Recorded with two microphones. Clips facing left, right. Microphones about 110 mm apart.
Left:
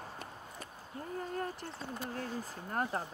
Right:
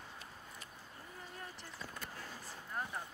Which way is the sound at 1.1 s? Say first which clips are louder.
Left 13 dB; 55° left (ahead or behind).